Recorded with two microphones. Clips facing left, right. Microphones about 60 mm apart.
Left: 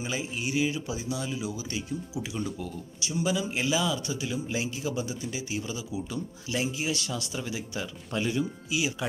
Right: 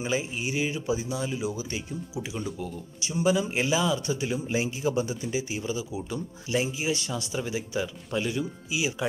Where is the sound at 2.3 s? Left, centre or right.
Centre.